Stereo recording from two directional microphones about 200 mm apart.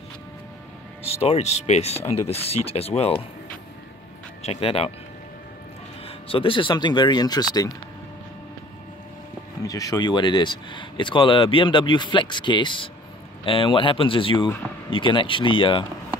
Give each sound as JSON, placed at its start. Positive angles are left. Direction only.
{"t": 1.1, "sound": "speech", "side_deg": 30}
{"t": 4.4, "sound": "speech", "side_deg": 30}
{"t": 6.0, "sound": "speech", "side_deg": 30}
{"t": 9.6, "sound": "speech", "side_deg": 15}